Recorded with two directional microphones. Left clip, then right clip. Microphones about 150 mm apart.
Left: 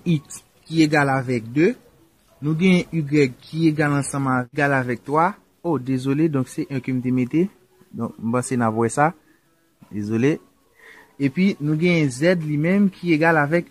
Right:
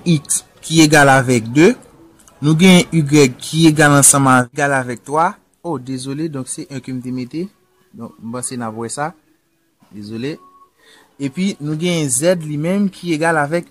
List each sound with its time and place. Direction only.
0.7 s speech: 25° left (ahead or behind)
4.1 s speech: 15° left (ahead or behind)
4.6 s speech: 25° left (ahead or behind)
5.9 s speech: 45° left (ahead or behind)
11.1 s speech: 30° left (ahead or behind)